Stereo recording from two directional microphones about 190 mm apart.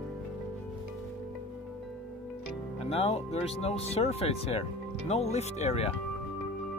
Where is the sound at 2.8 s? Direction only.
35° left (ahead or behind).